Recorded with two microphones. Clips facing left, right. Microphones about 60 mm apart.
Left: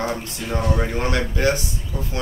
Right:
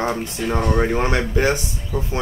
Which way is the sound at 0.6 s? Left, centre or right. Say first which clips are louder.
Right 3 dB; centre.